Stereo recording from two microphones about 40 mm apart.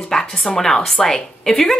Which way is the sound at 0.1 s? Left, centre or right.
Centre.